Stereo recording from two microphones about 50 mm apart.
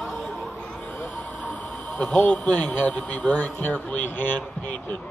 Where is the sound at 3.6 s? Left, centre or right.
Left.